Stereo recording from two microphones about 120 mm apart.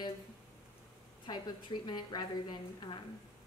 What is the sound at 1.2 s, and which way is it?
Speech, 40° left (ahead or behind).